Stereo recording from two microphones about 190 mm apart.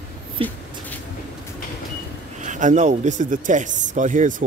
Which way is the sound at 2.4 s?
40° right (ahead or behind).